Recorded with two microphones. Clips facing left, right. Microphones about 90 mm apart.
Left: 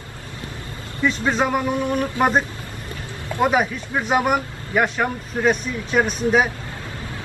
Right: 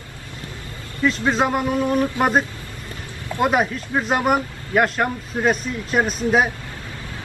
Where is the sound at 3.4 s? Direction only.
Centre (ahead or behind).